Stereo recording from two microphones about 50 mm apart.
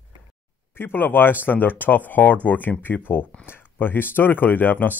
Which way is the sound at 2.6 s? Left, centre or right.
Left.